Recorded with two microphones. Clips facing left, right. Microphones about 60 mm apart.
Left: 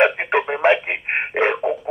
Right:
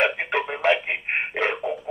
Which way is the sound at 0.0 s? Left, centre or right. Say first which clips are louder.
Left 6 dB; left.